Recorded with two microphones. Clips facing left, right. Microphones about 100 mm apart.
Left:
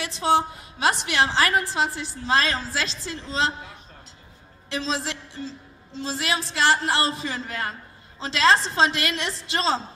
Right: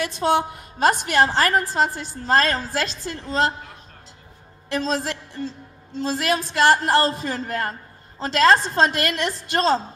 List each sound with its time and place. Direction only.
0.0 s a woman's voice: 50° right (ahead or behind)
4.6 s a woman's voice: 50° right (ahead or behind)